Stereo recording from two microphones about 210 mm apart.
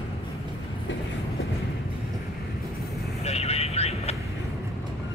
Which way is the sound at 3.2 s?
30° left (ahead or behind).